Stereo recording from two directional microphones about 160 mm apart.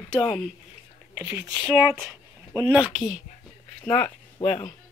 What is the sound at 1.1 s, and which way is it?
Speech, 10° right (ahead or behind).